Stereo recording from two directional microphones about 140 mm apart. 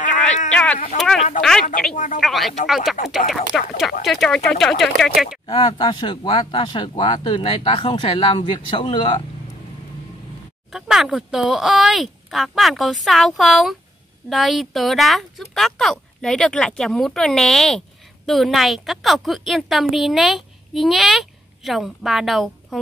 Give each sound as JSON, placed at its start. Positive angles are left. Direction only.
{"t": 0.5, "sound": "a sound", "side_deg": 10}
{"t": 0.9, "sound": "speech", "side_deg": 5}
{"t": 5.5, "sound": "speech", "side_deg": 35}
{"t": 10.7, "sound": "speech", "side_deg": 0}